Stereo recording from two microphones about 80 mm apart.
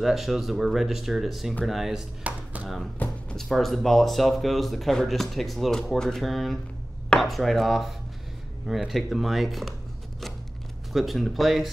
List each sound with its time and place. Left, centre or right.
0.0 s speech: centre
2.2 s a sound: centre
3.0 s music: left
3.3 s speech: centre
10.9 s speech: centre